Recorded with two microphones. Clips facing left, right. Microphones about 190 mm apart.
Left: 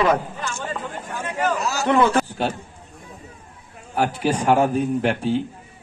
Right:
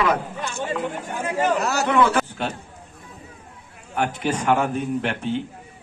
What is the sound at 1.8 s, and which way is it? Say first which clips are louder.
Speech: left 3 dB; 35° left (ahead or behind).